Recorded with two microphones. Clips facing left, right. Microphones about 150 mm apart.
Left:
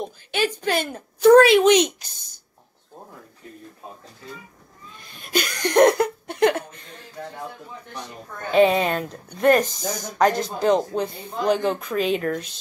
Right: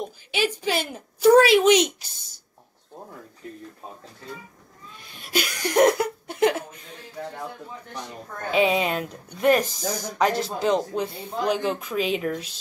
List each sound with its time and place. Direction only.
0.0 s a woman's voice: 10° right (ahead or behind)
0.6 s speech: 55° left (ahead or behind)
0.9 s a woman's voice: 10° right (ahead or behind)
5.2 s a woman's voice: 5° right (ahead or behind)
8.5 s a woman's voice: 5° right (ahead or behind)
10.0 s speech: 45° left (ahead or behind)
10.7 s a woman's voice: centre (ahead or behind)
11.5 s speech: 45° left (ahead or behind)
11.8 s a woman's voice: 5° right (ahead or behind)
12.3 s speech: 50° left (ahead or behind)